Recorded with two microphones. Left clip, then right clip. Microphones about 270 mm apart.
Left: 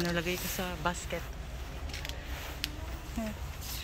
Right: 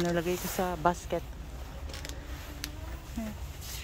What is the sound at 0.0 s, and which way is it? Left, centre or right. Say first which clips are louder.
Speech: right 2 dB; centre.